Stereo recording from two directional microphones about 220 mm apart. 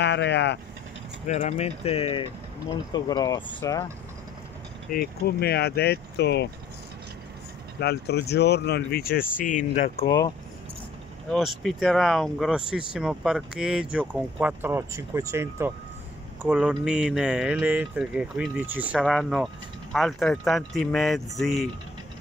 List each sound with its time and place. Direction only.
0.0 s speech: 50° left (ahead or behind)
1.2 s speech: 30° left (ahead or behind); by 3.8 s 15° left (ahead or behind)
4.9 s speech: 45° left (ahead or behind)
7.8 s speech: 50° left (ahead or behind); by 10.0 s 35° left (ahead or behind)
10.0 s speech: 15° left (ahead or behind)
11.2 s speech: centre (ahead or behind)